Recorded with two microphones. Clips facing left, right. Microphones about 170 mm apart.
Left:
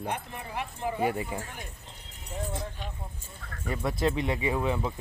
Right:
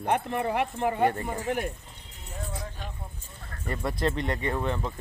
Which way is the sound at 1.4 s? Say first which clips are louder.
Right 14 dB; 70° right (ahead or behind).